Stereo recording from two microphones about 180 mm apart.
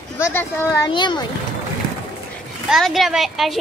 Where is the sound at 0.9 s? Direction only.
25° left (ahead or behind).